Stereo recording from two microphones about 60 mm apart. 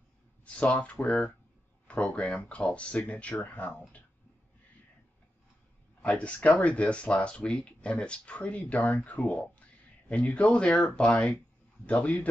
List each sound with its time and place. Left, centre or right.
0.5 s speech: left
6.0 s speech: left